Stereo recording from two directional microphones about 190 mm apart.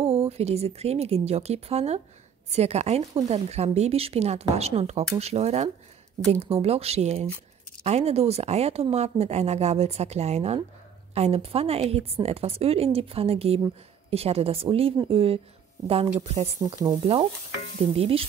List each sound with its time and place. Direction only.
0.0 s a woman's voice: 30° right (ahead or behind)
16.6 s sizzle: 15° right (ahead or behind)
17.0 s stir: 30° right (ahead or behind)
17.9 s a woman's voice: 30° right (ahead or behind)